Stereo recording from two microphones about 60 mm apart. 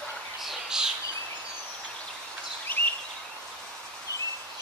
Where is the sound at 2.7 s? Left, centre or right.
Left.